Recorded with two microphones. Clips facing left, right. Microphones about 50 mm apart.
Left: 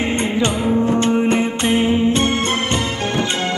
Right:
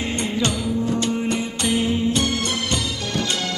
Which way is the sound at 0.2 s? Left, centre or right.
Left.